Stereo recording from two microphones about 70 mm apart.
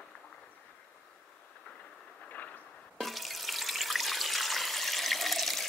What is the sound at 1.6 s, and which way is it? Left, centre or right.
Train, centre.